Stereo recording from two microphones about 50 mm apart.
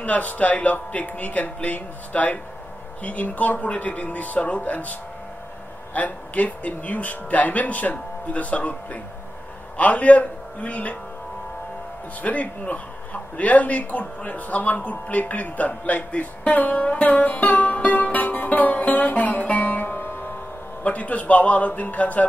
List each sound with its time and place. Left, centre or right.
0.0 s speech: left
5.9 s a man's voice: left
12.2 s speech: left